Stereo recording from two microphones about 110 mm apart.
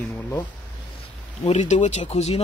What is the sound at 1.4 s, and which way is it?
Speech, 90° left.